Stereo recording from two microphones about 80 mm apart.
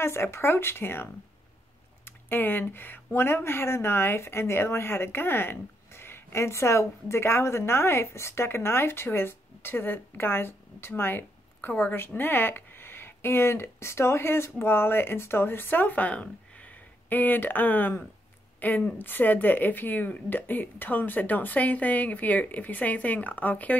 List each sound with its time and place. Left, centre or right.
0.0 s speech: left